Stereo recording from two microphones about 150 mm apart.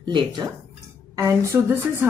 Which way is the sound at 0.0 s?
30° right (ahead or behind).